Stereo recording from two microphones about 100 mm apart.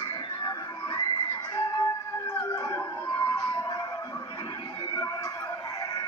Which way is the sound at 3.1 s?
40° left (ahead or behind).